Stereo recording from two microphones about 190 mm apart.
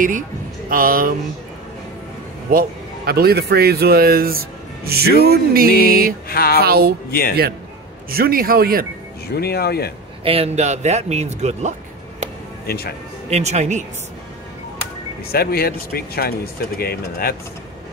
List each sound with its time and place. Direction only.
0.7 s a man's voice: 50° right (ahead or behind)
3.1 s speech: 55° right (ahead or behind)
6.2 s speech: 50° left (ahead or behind)
6.6 s speech: 55° right (ahead or behind)
7.1 s speech: 55° left (ahead or behind)
8.1 s a man's voice: 50° right (ahead or behind)
9.3 s speech: 55° left (ahead or behind)
10.2 s a man's voice: 30° right (ahead or behind)
12.6 s speech: 55° left (ahead or behind)
13.3 s a man's voice: 35° right (ahead or behind)
15.3 s speech: 55° left (ahead or behind)